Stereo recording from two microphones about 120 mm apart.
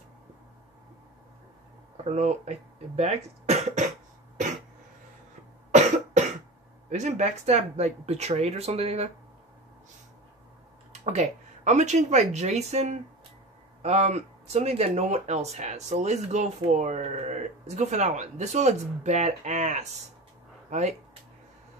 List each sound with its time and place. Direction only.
2.0 s speech: 70° right (ahead or behind)
5.7 s cough: 80° right
6.9 s speech: 80° right; by 9.1 s 60° right (ahead or behind)
10.9 s speech: 70° right (ahead or behind)